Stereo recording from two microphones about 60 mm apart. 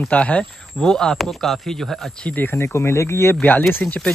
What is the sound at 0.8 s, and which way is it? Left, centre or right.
Speech, centre.